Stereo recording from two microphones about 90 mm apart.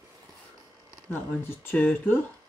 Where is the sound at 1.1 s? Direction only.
20° left (ahead or behind).